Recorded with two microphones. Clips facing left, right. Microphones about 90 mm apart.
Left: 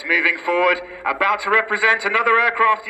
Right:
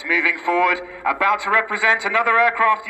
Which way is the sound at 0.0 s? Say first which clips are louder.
Even; 60° left (ahead or behind).